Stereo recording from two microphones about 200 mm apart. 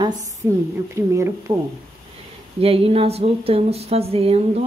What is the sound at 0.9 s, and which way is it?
Speech, 15° right (ahead or behind).